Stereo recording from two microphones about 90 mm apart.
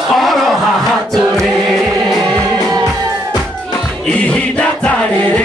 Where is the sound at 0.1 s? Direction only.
Centre (ahead or behind).